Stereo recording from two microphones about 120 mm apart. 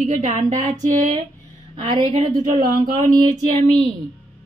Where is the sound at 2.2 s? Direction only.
80° right.